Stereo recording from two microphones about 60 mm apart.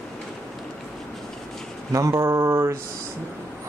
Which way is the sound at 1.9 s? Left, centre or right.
Right.